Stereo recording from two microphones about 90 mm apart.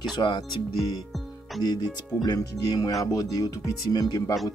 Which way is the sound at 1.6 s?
45° left (ahead or behind).